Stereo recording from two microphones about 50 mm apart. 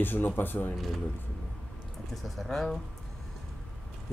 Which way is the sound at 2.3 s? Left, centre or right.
Centre.